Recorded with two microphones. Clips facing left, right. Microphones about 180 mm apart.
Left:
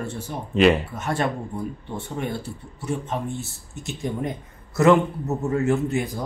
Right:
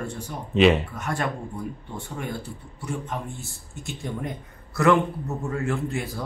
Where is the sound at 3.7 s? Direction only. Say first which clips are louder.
Left 4 dB; 20° left (ahead or behind).